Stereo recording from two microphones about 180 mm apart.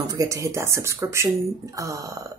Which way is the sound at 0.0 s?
20° right (ahead or behind).